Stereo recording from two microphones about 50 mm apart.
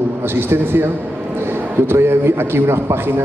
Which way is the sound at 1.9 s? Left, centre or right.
Right.